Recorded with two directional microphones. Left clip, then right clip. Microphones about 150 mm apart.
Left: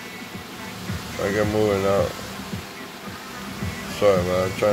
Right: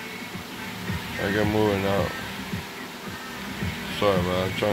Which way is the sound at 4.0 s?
5° left (ahead or behind).